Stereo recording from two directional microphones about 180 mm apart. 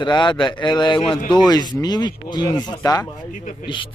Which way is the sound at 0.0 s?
25° left (ahead or behind).